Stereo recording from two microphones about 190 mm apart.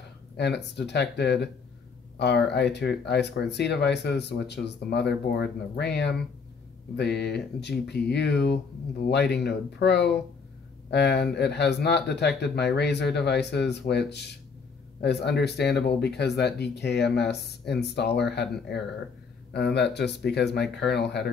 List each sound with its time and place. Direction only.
0.4 s speech: 60° left (ahead or behind)
19.5 s speech: 60° left (ahead or behind)